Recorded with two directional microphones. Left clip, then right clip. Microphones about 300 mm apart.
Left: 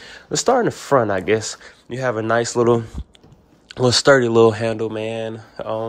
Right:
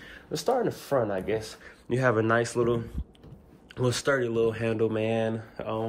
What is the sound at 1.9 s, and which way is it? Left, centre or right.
Speech, centre.